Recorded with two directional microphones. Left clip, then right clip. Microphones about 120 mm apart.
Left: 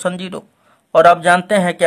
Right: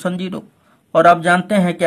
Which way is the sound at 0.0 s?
25° left (ahead or behind).